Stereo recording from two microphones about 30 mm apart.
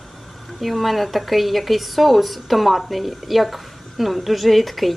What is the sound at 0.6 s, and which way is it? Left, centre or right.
A woman's voice, centre.